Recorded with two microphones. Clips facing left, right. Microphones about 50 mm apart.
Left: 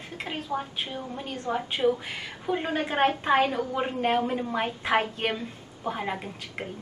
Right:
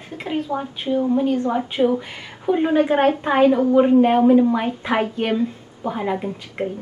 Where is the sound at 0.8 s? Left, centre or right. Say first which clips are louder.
Right 16 dB; right.